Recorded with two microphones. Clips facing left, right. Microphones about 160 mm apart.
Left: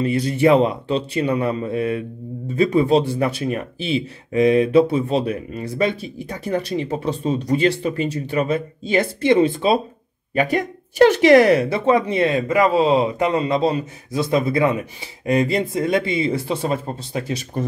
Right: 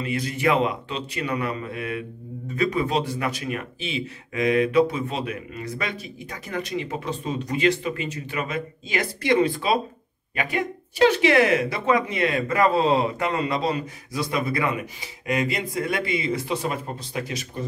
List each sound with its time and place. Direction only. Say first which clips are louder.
0.0 s speech: left 7 dB; 30° left (ahead or behind)
10.3 s speech: left 7 dB; 40° left (ahead or behind)
12.4 s a man's voice: left 2 dB; 15° left (ahead or behind); by 17.5 s 30° left (ahead or behind)